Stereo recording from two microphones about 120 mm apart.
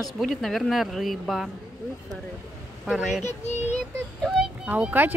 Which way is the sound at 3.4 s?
75° left (ahead or behind).